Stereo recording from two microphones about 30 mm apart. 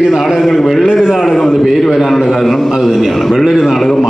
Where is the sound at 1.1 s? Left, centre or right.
Centre.